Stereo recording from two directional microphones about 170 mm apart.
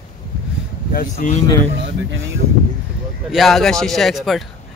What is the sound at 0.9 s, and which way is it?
Speech, 50° left (ahead or behind).